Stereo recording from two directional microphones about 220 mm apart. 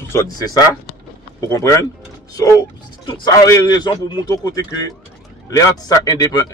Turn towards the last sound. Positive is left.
turn(degrees=15)  # may be behind; listen again after turning